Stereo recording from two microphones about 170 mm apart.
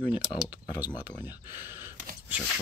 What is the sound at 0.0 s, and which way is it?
Speech, 10° right (ahead or behind).